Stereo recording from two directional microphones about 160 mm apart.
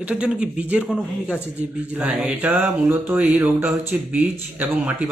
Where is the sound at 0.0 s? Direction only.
10° right (ahead or behind).